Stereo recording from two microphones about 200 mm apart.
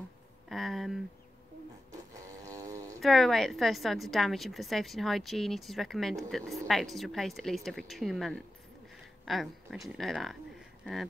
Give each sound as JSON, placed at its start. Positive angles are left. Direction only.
{"t": 0.5, "sound": "a woman's voice", "side_deg": 0}
{"t": 2.4, "sound": "a sound", "side_deg": -20}
{"t": 3.0, "sound": "a woman's voice", "side_deg": 0}